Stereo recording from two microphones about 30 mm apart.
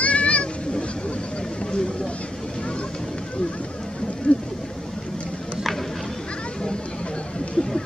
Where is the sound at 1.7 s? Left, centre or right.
Left.